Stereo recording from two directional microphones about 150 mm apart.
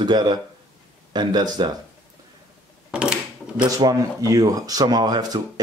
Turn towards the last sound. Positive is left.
turn(degrees=-25)  # may be behind; listen again after turning